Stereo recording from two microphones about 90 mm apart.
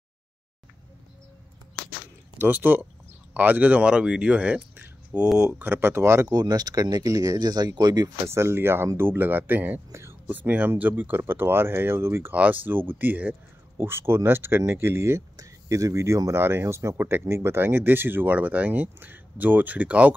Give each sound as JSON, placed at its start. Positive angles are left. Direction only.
{"t": 2.3, "sound": "speech", "side_deg": -20}
{"t": 6.2, "sound": "speech", "side_deg": -45}
{"t": 8.3, "sound": "speech", "side_deg": -30}
{"t": 9.8, "sound": "speech", "side_deg": -30}
{"t": 10.2, "sound": "speech", "side_deg": -20}